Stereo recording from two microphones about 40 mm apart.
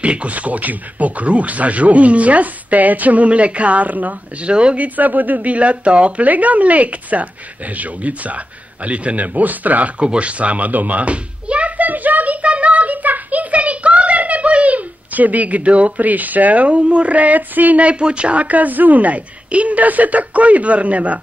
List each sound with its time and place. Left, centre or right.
0.0 s speech: right
4.5 s speech: right
4.7 s speech: right
9.9 s a child's voice: right